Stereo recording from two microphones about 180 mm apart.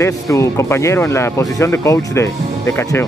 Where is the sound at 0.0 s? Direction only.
15° left (ahead or behind).